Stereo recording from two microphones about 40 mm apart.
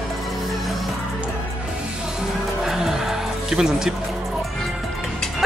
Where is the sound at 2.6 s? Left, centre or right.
Centre.